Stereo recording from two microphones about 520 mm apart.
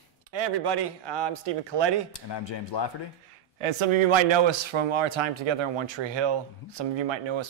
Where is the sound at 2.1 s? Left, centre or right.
Left.